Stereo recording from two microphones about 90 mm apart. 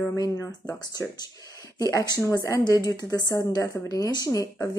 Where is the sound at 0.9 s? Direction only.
45° left (ahead or behind).